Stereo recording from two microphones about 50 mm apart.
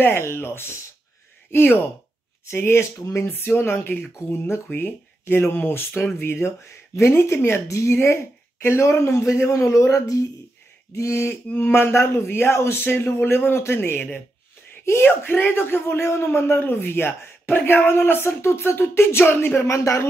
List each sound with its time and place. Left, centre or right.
0.0 s a man's voice: left
1.5 s speech: left
2.4 s speech: left
3.3 s a man's voice: left
4.2 s a man's voice: left
7.2 s a man's voice: left
7.6 s speech: left
7.9 s speech: left
11.0 s speech: left
11.5 s a man's voice: left
11.9 s a man's voice: left
13.9 s a man's voice: left
19.7 s speech: left